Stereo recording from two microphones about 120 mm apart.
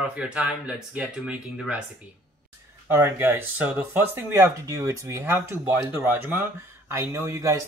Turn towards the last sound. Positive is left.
turn(degrees=-25)  # may be behind; listen again after turning